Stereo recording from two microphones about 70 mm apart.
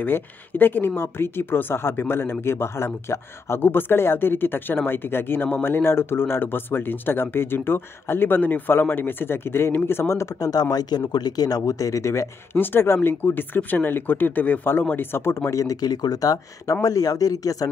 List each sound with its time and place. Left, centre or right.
0.0 s speech: left
10.4 s speech: left
12.5 s speech: left
15.5 s speech: left